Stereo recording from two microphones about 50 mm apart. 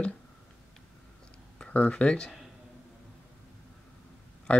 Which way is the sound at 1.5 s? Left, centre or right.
Left.